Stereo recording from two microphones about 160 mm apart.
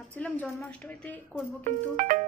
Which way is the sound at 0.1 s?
10° left (ahead or behind).